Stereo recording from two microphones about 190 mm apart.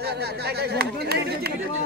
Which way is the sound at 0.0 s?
60° right (ahead or behind).